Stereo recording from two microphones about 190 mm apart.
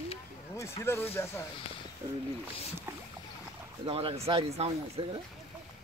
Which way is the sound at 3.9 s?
30° right (ahead or behind).